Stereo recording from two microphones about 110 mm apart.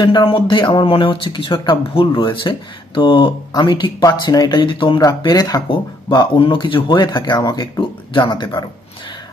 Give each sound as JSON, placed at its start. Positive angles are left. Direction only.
{"t": 0.0, "sound": "speech", "side_deg": 45}